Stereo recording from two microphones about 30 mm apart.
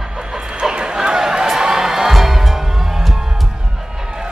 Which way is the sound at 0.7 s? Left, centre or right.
Right.